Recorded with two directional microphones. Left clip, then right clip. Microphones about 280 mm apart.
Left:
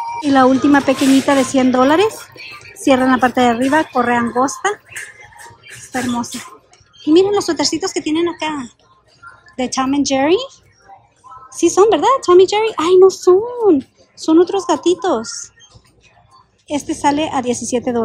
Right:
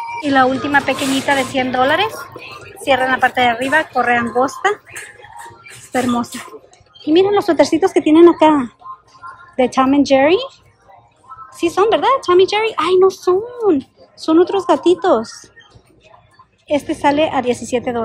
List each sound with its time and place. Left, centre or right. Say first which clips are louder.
0.1 s music: left 1 dB; centre
0.7 s a woman's voice: left 2 dB; centre
2.3 s whispering: right 1 dB; centre
2.8 s a woman's voice: left 1 dB; left
7.1 s speech: even; centre
11.5 s speech: left 2 dB; centre
16.6 s speech: right 2 dB; centre